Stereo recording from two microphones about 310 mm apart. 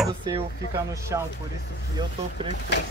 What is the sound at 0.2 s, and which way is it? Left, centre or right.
Speech, centre.